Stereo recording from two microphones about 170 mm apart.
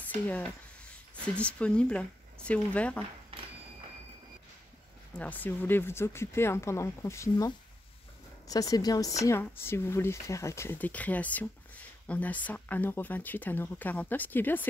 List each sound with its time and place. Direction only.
0.0 s speech: 10° left (ahead or behind)
5.1 s speech: 10° left (ahead or behind)